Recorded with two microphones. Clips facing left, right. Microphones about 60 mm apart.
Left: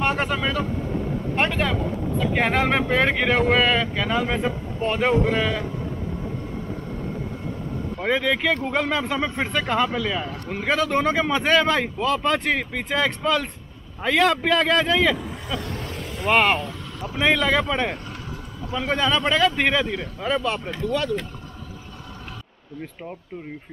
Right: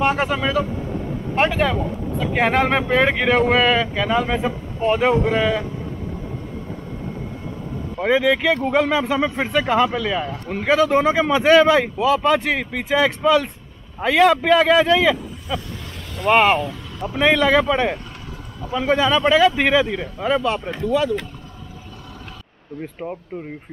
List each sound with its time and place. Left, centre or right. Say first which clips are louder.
0.0 s speech: right 4 dB; centre
8.0 s speech: right 5 dB; centre
15.8 s vehicle: left 4 dB; left
16.3 s speech: right 4 dB; centre
22.8 s speech: right 6 dB; centre